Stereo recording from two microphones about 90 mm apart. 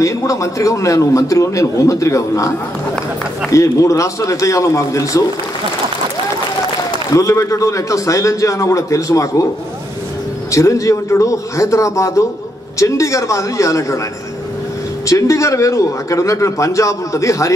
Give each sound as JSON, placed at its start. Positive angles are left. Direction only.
{"t": 0.0, "sound": "a man's voice", "side_deg": 35}
{"t": 7.2, "sound": "a man's voice", "side_deg": 35}
{"t": 10.5, "sound": "a man's voice", "side_deg": 35}
{"t": 15.0, "sound": "a man's voice", "side_deg": 35}